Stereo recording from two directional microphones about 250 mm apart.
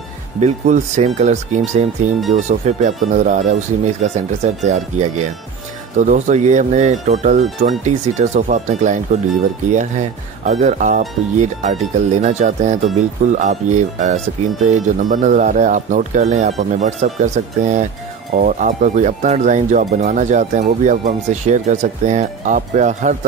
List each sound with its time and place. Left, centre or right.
0.4 s speech: right